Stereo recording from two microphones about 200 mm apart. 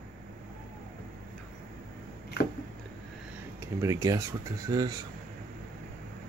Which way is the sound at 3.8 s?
15° right (ahead or behind).